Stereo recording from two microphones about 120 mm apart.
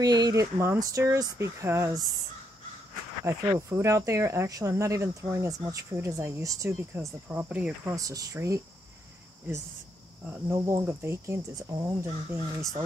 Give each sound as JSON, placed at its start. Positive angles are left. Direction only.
{"t": 0.0, "sound": "speech", "side_deg": -35}
{"t": 3.3, "sound": "speech", "side_deg": -25}
{"t": 7.8, "sound": "speech", "side_deg": -30}
{"t": 10.5, "sound": "speech", "side_deg": -25}